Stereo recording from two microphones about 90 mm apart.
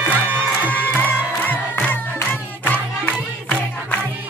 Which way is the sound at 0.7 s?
20° left (ahead or behind).